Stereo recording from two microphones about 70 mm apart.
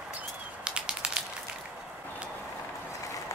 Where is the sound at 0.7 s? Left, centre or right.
Centre.